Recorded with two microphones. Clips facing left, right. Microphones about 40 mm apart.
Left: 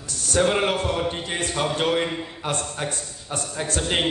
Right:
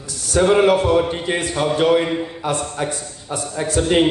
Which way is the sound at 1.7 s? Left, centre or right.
Centre.